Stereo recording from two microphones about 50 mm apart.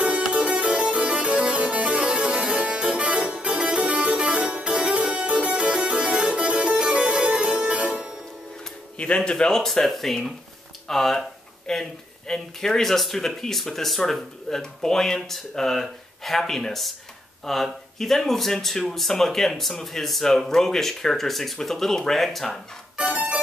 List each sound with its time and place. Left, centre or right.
0.3 s music: right
4.4 s music: right
8.9 s speech: left; by 22.6 s centre
23.1 s music: right